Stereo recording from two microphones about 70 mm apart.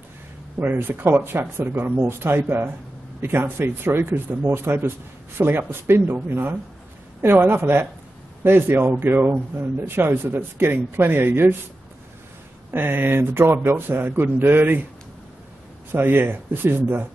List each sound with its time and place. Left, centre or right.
0.6 s speech: right
12.7 s speech: right
15.9 s speech: right